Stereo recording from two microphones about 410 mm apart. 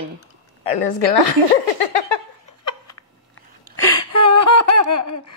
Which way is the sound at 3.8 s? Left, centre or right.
Left.